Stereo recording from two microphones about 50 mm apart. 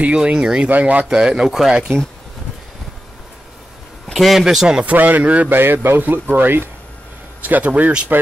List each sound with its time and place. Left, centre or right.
0.0 s speech: centre
0.7 s speech: right
1.0 s speech: centre
4.1 s speech: centre
4.8 s speech: right
5.5 s speech: right
7.4 s speech: right